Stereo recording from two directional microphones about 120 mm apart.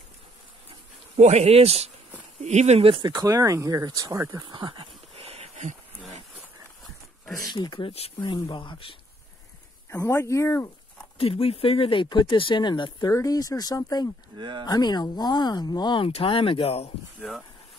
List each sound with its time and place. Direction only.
1.1 s speech: 65° right (ahead or behind); by 3.2 s 45° right (ahead or behind)
3.2 s speech: 25° right (ahead or behind)
4.6 s a sound: 40° right (ahead or behind); by 5.8 s 70° right (ahead or behind)
7.5 s speech: 40° left (ahead or behind)
9.8 s speech: 20° left (ahead or behind)
11.1 s speech: 55° left (ahead or behind)
13.1 s speech: 30° left (ahead or behind)
14.3 s speech: 40° right (ahead or behind)
14.7 s speech: 35° left (ahead or behind)
16.1 s speech: 50° left (ahead or behind)
17.2 s speech: centre (ahead or behind)